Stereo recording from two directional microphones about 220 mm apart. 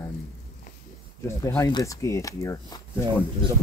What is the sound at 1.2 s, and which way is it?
Speech, 15° left (ahead or behind).